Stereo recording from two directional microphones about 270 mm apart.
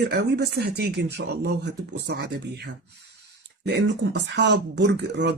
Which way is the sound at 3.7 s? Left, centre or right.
Right.